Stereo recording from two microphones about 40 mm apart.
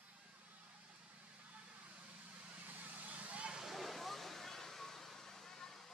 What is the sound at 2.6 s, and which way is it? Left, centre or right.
Vehicle, right.